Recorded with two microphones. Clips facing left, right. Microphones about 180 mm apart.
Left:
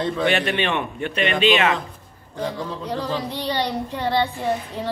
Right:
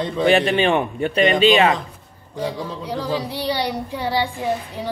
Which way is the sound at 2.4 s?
10° right (ahead or behind).